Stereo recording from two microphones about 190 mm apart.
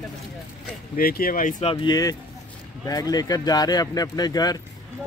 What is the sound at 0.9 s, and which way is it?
Speech, 50° left (ahead or behind).